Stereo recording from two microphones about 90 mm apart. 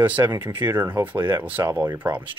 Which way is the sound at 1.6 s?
35° right (ahead or behind).